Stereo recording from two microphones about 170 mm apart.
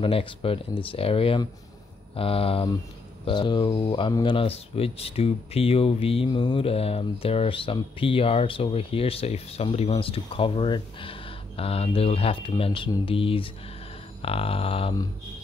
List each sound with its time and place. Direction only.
0.0 s speech: 35° left (ahead or behind)